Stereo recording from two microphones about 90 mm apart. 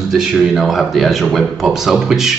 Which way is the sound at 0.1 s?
5° right (ahead or behind).